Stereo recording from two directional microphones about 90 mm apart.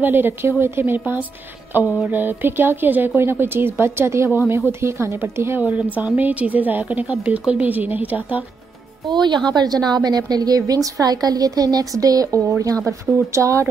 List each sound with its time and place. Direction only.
0.0 s a woman's voice: 25° right (ahead or behind)
5.6 s a woman's voice: 15° right (ahead or behind)
9.1 s a woman's voice: 55° right (ahead or behind); by 13.7 s 35° right (ahead or behind)